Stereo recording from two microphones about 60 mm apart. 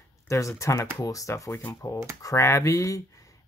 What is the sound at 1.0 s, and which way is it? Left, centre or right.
Speech, left.